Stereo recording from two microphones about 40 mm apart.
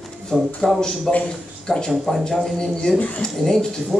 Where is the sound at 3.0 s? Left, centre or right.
Left.